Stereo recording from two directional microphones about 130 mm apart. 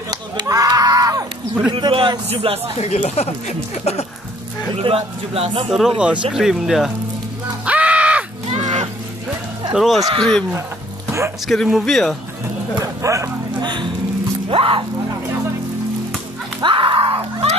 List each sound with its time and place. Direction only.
0.1 s a sound: 30° right (ahead or behind)
1.7 s a man's voice: 40° right (ahead or behind)
2.8 s speech: 55° left (ahead or behind)
4.7 s a man's voice: 50° right (ahead or behind)
5.7 s speech: centre (ahead or behind)
7.6 s music: 10° right (ahead or behind)
8.5 s a sound: 60° right (ahead or behind)
9.8 s speech: centre (ahead or behind)
11.4 s speech: centre (ahead or behind)
12.7 s a sound: 25° right (ahead or behind)
14.5 s music: 45° right (ahead or behind)
16.6 s a sound: 40° right (ahead or behind)